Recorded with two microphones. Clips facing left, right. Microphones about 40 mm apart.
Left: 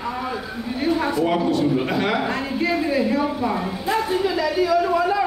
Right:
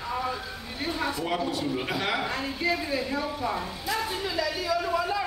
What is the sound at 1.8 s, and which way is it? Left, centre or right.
Speech, centre.